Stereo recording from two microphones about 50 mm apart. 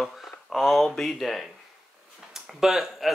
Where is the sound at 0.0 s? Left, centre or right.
Centre.